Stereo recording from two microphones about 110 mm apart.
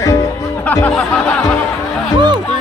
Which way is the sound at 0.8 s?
10° left (ahead or behind).